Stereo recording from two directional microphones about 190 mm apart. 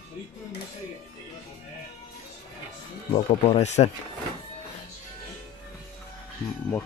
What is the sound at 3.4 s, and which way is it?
Speech, 35° left (ahead or behind).